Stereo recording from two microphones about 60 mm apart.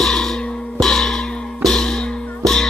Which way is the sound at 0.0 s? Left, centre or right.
Centre.